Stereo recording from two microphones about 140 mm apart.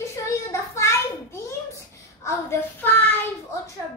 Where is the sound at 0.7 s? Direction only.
20° left (ahead or behind).